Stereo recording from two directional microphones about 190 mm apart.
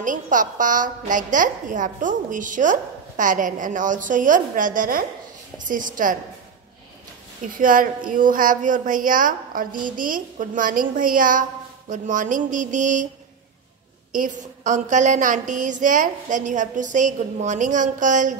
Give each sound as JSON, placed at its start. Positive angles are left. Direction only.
{"t": 0.0, "sound": "a woman's voice", "side_deg": -45}
{"t": 7.5, "sound": "a woman's voice", "side_deg": -45}
{"t": 14.1, "sound": "a woman's voice", "side_deg": -40}